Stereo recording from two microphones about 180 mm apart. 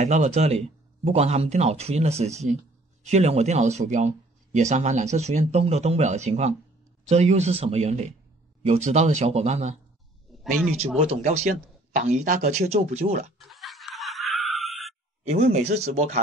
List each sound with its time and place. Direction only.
0.0 s speech: 40° right (ahead or behind)
10.3 s a sound: centre (ahead or behind)
11.1 s speech: 40° right (ahead or behind)
13.4 s music: centre (ahead or behind)
15.2 s speech: 40° right (ahead or behind)